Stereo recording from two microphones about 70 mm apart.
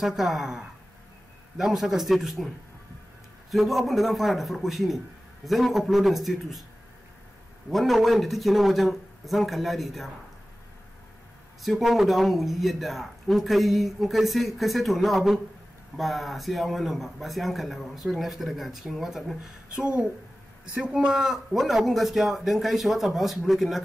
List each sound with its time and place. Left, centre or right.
0.0 s speech: centre
3.5 s speech: centre
7.7 s speech: centre
11.6 s speech: centre
19.7 s a woman's voice: centre